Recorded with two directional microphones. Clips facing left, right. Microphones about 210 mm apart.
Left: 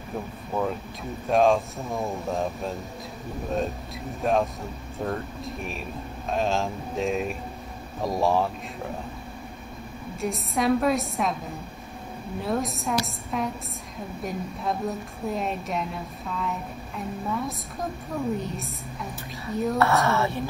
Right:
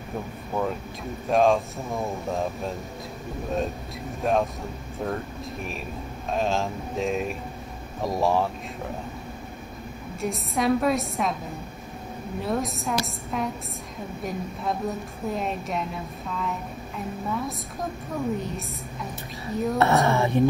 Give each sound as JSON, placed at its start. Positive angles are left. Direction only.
{"t": 1.3, "sound": "a woman's voice", "side_deg": 0}
{"t": 10.2, "sound": "a woman's voice", "side_deg": 0}
{"t": 12.4, "sound": "a woman's voice", "side_deg": 0}
{"t": 19.8, "sound": "speech", "side_deg": -15}